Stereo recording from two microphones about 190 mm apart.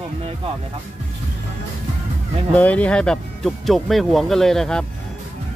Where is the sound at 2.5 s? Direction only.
10° left (ahead or behind).